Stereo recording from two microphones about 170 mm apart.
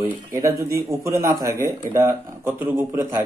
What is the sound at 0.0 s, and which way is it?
Speech, 15° right (ahead or behind).